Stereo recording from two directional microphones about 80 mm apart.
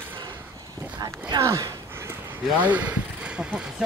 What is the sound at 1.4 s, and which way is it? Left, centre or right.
Speech, right.